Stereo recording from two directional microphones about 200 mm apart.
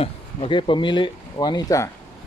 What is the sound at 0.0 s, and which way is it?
Speech, 25° left (ahead or behind).